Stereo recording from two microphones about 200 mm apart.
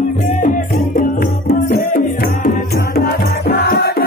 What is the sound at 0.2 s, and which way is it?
Music, 40° left (ahead or behind).